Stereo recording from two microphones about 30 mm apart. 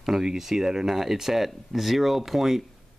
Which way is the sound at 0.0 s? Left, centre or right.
Centre.